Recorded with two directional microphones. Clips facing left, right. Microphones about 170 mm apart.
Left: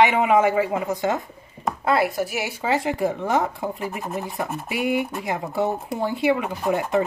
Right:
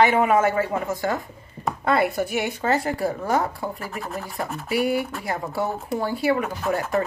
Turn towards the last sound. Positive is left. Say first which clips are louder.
# left 2 dB
turn(degrees=20)  # may be behind; listen again after turning